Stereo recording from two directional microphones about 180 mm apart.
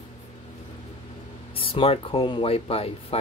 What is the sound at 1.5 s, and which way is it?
Speech, 30° left (ahead or behind).